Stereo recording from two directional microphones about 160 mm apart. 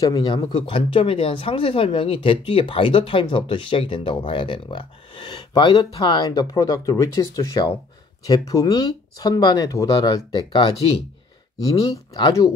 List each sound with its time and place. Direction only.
0.0 s speech: 25° left (ahead or behind)